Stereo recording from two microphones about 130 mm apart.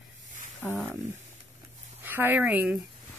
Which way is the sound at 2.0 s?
15° right (ahead or behind).